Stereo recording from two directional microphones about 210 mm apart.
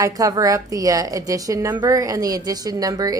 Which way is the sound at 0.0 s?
15° right (ahead or behind).